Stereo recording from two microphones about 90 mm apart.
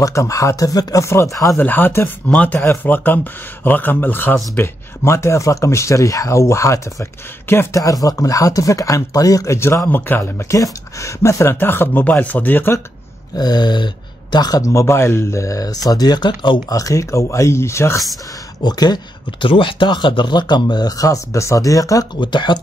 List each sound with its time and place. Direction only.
0.0 s speech: 40° left (ahead or behind)
1.6 s speech: 20° left (ahead or behind)
10.5 s speech: 35° left (ahead or behind)
13.3 s speech: 50° left (ahead or behind); by 18.0 s 30° left (ahead or behind)
18.6 s speech: 50° left (ahead or behind)
19.4 s speech: 75° left (ahead or behind); by 22.0 s 40° left (ahead or behind)
22.2 s speech: 60° left (ahead or behind)